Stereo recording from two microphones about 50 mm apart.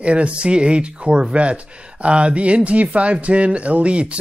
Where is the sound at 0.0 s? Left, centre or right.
Right.